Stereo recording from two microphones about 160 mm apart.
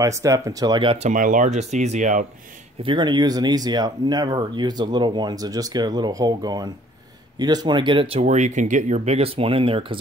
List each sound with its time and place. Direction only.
0.0 s speech: 20° right (ahead or behind)
0.9 s speech: 50° right (ahead or behind)
2.8 s speech: 30° right (ahead or behind)